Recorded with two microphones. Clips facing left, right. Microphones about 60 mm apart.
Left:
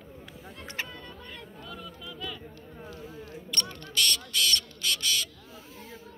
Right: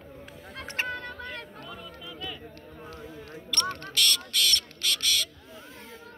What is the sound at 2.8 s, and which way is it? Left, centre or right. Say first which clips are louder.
Single-lens reflex camera: even; right.